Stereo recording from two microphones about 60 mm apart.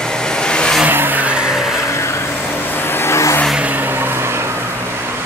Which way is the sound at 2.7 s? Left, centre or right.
Left.